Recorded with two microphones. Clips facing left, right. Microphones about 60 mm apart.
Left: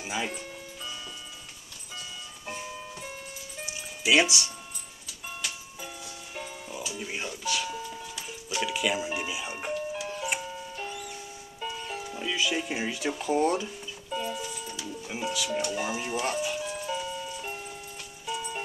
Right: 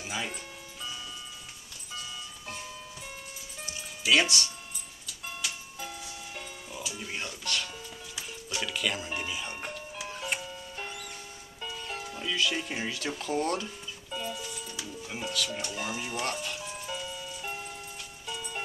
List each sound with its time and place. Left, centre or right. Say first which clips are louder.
0.0 s speech: left 3 dB; centre
3.6 s music: left 2 dB; centre
6.3 s music: left 7 dB; centre
8.3 s speech: left 4 dB; centre
10.2 s music: even; centre
11.6 s speech: left 3 dB; centre
14.1 s a sound: left 4 dB; centre
14.8 s music: left 3 dB; centre